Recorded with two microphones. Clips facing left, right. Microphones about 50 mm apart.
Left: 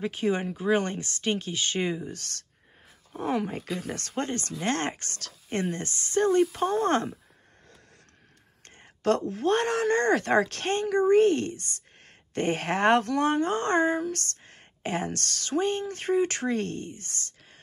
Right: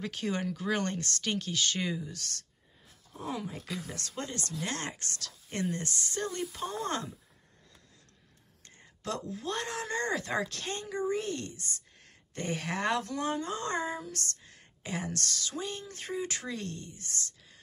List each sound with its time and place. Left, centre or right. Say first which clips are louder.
0.0 s speech: left 6 dB; left
8.6 s speech: left 13 dB; left